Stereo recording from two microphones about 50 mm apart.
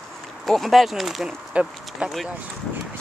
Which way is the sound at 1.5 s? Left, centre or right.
Right.